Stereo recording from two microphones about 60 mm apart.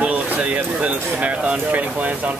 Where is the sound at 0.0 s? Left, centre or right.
Right.